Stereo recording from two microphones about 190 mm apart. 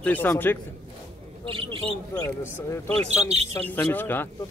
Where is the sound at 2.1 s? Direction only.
15° left (ahead or behind).